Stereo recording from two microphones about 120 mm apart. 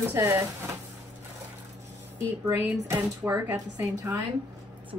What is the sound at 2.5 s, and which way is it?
Speech, 15° right (ahead or behind).